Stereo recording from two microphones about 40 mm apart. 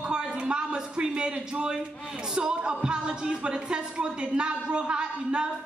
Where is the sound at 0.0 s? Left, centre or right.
Right.